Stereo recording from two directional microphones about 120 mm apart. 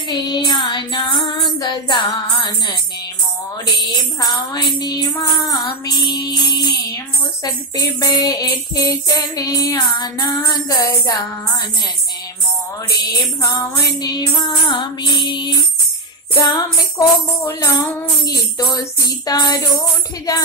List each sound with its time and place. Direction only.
0.1 s child singing: 40° left (ahead or behind)
3.8 s music: 35° left (ahead or behind)
13.4 s music: 30° left (ahead or behind)